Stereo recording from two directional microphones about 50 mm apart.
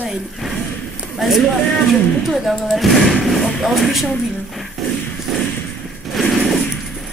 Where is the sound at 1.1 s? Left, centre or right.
Centre.